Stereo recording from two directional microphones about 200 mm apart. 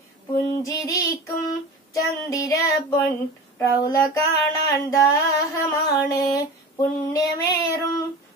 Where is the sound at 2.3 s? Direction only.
15° left (ahead or behind).